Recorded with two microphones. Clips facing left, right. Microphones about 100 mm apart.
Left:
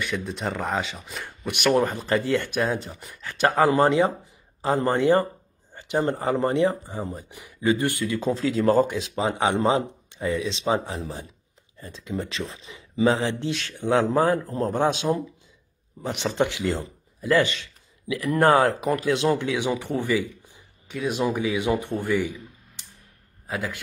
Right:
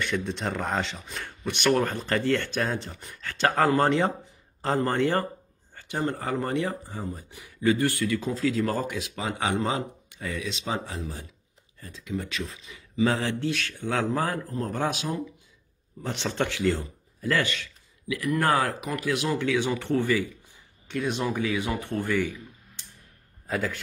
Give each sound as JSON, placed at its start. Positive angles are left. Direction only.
{"t": 0.0, "sound": "a man's voice", "side_deg": 5}
{"t": 16.0, "sound": "a man's voice", "side_deg": 15}
{"t": 20.9, "sound": "speech", "side_deg": 5}
{"t": 23.4, "sound": "a man's voice", "side_deg": 15}